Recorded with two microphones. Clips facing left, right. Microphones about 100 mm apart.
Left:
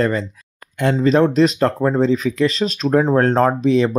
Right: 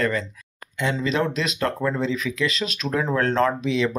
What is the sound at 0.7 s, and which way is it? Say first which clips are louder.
Speech: left 8 dB; 50° left (ahead or behind).